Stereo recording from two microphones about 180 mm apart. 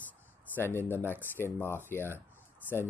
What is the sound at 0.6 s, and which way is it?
Speech, 10° left (ahead or behind).